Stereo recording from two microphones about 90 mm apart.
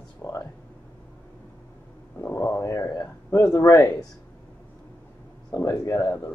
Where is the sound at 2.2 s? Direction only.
30° left (ahead or behind).